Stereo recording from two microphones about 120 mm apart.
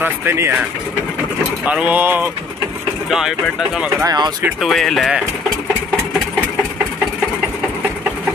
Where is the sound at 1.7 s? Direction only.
10° right (ahead or behind).